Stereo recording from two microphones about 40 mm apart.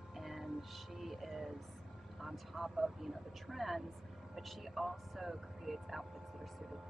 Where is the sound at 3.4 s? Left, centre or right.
Centre.